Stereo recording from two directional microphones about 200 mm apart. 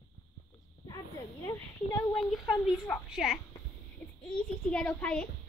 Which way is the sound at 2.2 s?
Centre (ahead or behind).